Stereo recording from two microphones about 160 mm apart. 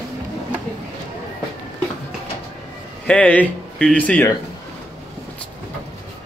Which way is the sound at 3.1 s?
10° left (ahead or behind).